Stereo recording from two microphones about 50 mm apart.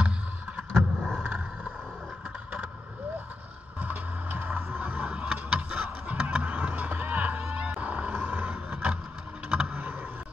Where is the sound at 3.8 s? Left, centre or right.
Right.